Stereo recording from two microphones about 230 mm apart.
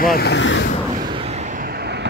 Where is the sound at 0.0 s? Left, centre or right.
Left.